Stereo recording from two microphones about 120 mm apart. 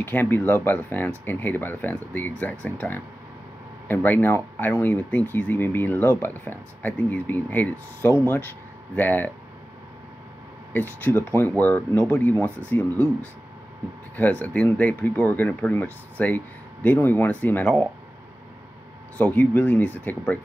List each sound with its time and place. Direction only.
0.0 s speech: 15° left (ahead or behind)
10.7 s speech: 15° left (ahead or behind)
19.1 s speech: 15° left (ahead or behind)